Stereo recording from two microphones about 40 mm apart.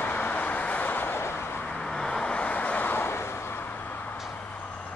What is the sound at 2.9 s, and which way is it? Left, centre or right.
Vehicle, left.